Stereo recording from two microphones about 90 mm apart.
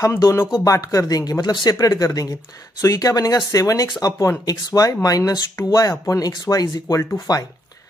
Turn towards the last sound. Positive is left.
turn(degrees=45)  # may be behind; listen again after turning